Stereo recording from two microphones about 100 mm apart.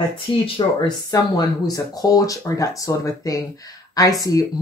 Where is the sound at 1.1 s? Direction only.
40° left (ahead or behind).